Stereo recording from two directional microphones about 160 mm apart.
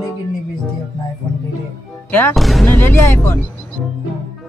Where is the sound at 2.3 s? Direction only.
Centre (ahead or behind).